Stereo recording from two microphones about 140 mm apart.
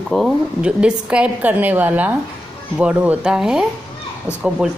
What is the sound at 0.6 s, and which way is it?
A woman's voice, 5° right (ahead or behind).